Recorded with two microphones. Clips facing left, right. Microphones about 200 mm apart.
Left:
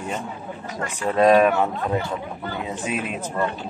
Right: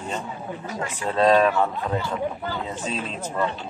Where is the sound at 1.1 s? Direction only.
15° left (ahead or behind).